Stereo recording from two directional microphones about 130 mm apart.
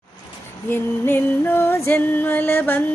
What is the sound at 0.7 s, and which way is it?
Music, 15° left (ahead or behind).